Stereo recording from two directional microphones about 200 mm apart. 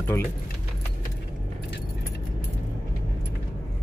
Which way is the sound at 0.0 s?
10° left (ahead or behind).